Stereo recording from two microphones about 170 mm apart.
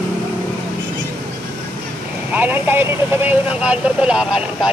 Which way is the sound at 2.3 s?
10° right (ahead or behind).